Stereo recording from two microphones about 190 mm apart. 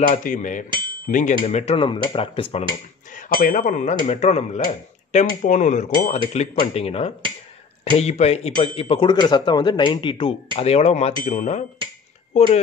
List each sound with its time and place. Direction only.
0.1 s a sound: 40° left (ahead or behind)
1.0 s speech: 45° left (ahead or behind); by 2.6 s 30° left (ahead or behind)
3.1 s speech: 45° left (ahead or behind)